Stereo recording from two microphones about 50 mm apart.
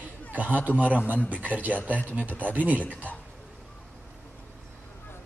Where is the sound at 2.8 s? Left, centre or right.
Left.